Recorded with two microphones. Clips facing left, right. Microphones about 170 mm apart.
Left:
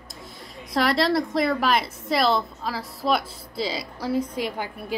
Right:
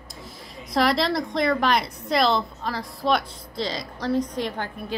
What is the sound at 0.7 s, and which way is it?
A woman's voice, centre (ahead or behind).